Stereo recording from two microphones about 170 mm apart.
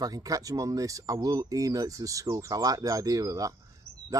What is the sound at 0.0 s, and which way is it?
Speech, 20° right (ahead or behind).